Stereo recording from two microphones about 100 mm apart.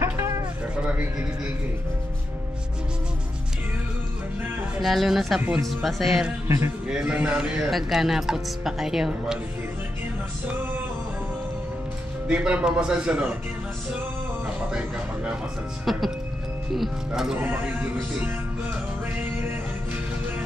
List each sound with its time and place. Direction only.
0.2 s a sound: 30° right (ahead or behind)
4.7 s speech: 5° right (ahead or behind)
6.4 s music: 25° right (ahead or behind)
6.9 s speech: 10° right (ahead or behind)
10.4 s music: 20° right (ahead or behind)
12.3 s speech: 10° right (ahead or behind)
17.4 s speech: 20° right (ahead or behind)
18.2 s music: 15° right (ahead or behind)